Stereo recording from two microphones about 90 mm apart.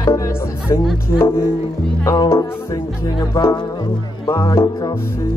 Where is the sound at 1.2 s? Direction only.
25° left (ahead or behind).